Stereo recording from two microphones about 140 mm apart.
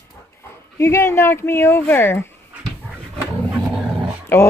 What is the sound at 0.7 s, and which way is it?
A woman's voice, 20° left (ahead or behind).